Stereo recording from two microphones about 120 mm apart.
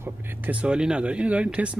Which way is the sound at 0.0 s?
15° right (ahead or behind).